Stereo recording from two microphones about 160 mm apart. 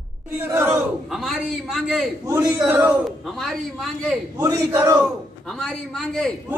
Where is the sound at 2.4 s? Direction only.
10° right (ahead or behind).